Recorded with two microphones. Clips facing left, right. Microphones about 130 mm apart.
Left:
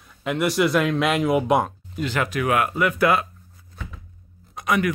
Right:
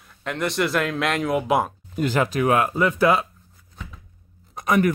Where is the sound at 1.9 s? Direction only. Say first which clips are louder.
Right 4 dB; 45° right (ahead or behind).